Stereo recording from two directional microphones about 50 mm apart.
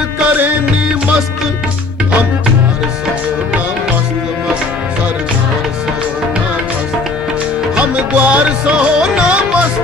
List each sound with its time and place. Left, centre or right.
7.7 s music: right
8.5 s music: centre